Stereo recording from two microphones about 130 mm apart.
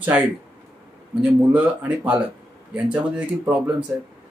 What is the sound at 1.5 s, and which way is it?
Speech, 10° right (ahead or behind).